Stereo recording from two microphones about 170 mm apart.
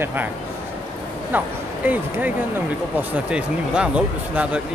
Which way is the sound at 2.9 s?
10° right (ahead or behind).